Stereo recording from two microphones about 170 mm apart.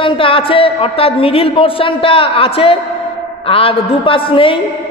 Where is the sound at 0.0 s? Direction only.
30° left (ahead or behind).